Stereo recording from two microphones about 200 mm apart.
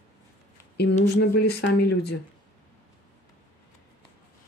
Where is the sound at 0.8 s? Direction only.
55° left (ahead or behind).